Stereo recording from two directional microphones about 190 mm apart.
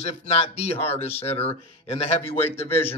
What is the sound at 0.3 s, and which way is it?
Speech, 35° left (ahead or behind).